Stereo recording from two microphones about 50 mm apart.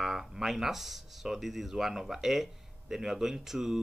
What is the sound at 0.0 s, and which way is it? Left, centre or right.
Speech, centre.